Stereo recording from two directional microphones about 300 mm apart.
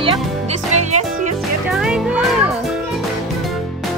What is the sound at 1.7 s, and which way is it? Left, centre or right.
Music, centre.